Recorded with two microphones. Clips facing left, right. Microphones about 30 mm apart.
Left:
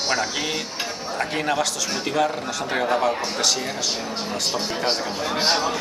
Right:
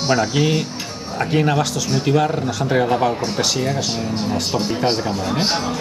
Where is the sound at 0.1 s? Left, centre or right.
Centre.